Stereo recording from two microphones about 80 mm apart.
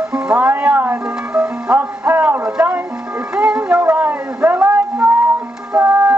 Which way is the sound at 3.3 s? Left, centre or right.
Centre.